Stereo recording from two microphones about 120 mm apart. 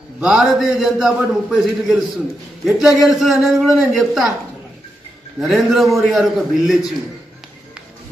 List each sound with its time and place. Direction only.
0.2 s a man's voice: 5° right (ahead or behind)
5.4 s a man's voice: centre (ahead or behind)